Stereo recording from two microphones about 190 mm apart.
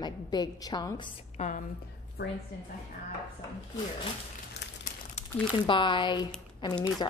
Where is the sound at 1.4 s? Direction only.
40° left (ahead or behind).